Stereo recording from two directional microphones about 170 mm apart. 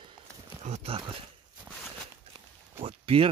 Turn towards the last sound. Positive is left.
turn(degrees=-35)  # may be behind; listen again after turning